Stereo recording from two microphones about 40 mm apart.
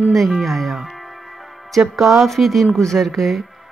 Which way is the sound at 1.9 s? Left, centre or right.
Centre.